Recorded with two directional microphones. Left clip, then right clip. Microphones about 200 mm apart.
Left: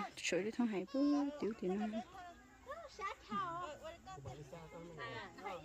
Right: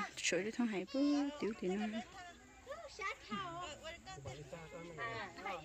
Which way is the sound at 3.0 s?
30° left (ahead or behind).